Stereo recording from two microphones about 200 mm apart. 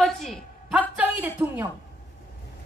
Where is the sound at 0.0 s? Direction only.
Centre (ahead or behind).